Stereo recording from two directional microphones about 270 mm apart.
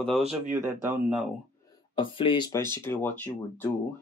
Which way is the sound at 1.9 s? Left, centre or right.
Centre.